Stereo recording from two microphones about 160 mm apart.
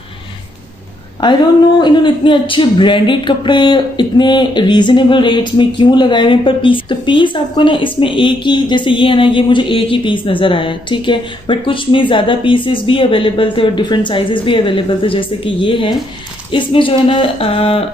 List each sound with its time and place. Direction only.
1.8 s speech: 30° left (ahead or behind)